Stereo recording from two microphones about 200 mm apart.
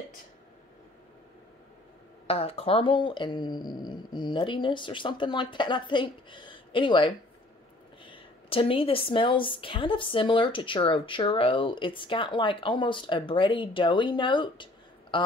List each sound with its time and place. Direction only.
2.2 s a woman's voice: 30° left (ahead or behind)